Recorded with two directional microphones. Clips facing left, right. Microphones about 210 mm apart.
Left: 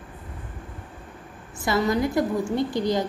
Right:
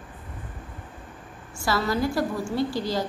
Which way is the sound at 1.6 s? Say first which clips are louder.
Left 2 dB; 20° left (ahead or behind).